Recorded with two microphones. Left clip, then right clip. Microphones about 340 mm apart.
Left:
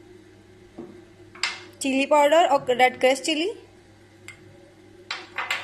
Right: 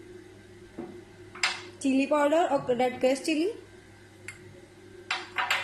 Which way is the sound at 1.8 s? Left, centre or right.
Left.